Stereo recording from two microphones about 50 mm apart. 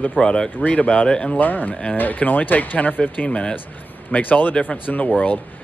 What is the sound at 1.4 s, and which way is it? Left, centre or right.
Speech, left.